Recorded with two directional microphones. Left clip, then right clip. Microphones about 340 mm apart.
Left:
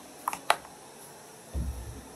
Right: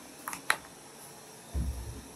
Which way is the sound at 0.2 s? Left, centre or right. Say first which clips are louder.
Left 4 dB; centre.